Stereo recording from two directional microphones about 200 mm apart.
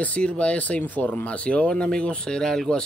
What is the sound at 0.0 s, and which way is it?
Speech, 5° left (ahead or behind).